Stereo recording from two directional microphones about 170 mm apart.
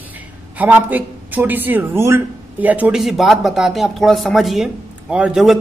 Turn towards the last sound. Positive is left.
turn(degrees=-5)  # may be behind; listen again after turning